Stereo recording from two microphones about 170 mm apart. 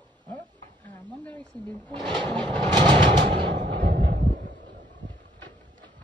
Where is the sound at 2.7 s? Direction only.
25° right (ahead or behind).